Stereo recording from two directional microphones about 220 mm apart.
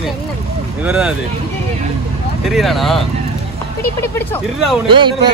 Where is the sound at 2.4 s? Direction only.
Centre (ahead or behind).